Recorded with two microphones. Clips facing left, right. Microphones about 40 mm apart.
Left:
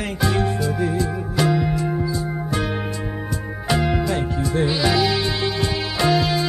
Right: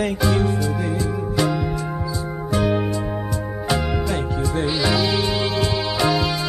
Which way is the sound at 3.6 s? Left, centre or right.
Centre.